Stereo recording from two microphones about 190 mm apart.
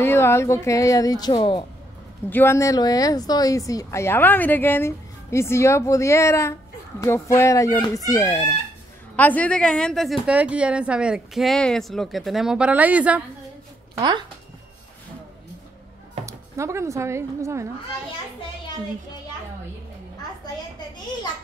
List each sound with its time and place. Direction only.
0.0 s speech: 15° left (ahead or behind)
2.2 s a woman's voice: 10° left (ahead or behind); by 13.2 s 5° right (ahead or behind)
16.3 s speech: 15° right (ahead or behind)